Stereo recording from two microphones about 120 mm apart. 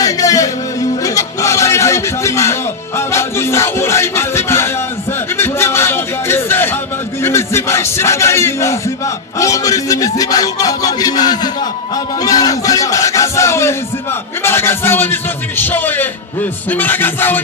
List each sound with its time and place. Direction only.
0.0 s music: 30° left (ahead or behind)
5.4 s a sound: 20° left (ahead or behind)
7.2 s music: 20° left (ahead or behind)
9.4 s a man's voice: 30° left (ahead or behind)
16.7 s music: 15° left (ahead or behind)